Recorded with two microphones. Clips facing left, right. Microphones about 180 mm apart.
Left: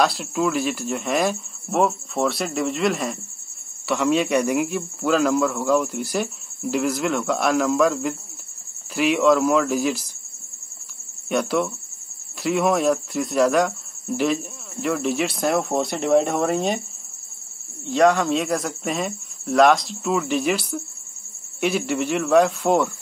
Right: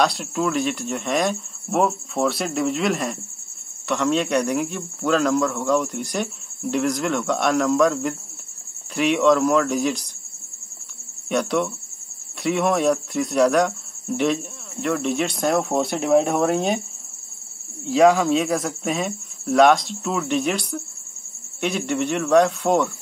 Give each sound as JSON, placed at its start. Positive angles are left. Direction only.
{"t": 0.0, "sound": "speech", "side_deg": 0}
{"t": 11.2, "sound": "speech", "side_deg": 0}
{"t": 17.8, "sound": "speech", "side_deg": 0}